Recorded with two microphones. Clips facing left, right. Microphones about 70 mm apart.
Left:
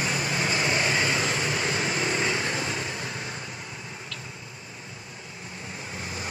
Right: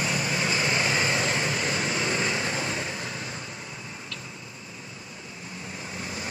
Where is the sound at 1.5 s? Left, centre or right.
Left.